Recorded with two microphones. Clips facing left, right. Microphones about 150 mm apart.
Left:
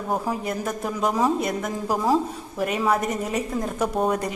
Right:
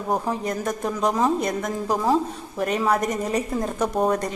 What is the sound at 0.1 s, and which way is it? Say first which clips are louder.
A woman's voice: right 2 dB; 5° left (ahead or behind).